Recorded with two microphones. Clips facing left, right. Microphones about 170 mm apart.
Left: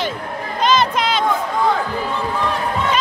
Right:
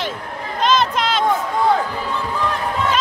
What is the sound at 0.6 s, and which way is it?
Chatter, centre (ahead or behind).